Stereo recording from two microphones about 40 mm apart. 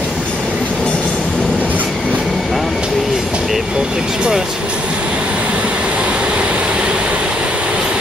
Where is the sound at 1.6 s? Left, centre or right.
Right.